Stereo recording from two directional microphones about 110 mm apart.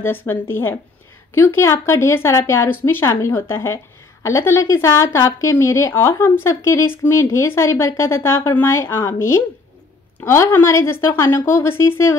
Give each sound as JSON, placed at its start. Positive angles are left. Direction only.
{"t": 0.0, "sound": "speech", "side_deg": 20}